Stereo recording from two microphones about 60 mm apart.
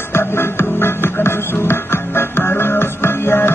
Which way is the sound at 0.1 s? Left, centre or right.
Left.